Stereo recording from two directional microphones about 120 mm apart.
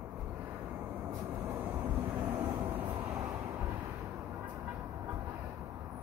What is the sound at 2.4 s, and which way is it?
Vehicle, 15° right (ahead or behind).